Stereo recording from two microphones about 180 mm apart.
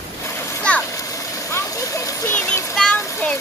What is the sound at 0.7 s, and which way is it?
Splash, 5° left (ahead or behind).